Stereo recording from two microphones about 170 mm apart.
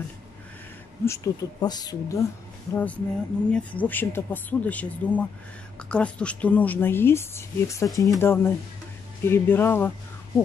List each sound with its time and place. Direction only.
1.0 s speech: 20° left (ahead or behind)
2.7 s speech: 10° left (ahead or behind)